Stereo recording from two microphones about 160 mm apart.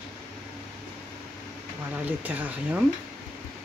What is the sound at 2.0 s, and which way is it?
Speech, 10° right (ahead or behind).